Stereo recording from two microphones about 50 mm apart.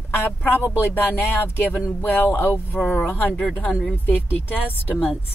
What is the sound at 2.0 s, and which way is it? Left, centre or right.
Music, left.